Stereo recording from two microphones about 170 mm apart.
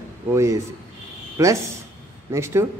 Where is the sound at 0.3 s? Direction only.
15° right (ahead or behind).